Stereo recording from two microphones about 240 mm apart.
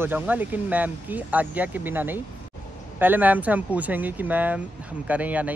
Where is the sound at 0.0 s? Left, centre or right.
Centre.